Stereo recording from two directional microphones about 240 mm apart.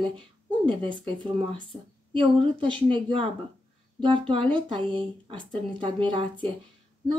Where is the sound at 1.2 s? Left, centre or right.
Right.